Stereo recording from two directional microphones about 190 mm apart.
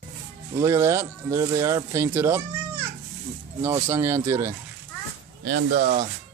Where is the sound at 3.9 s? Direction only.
15° right (ahead or behind).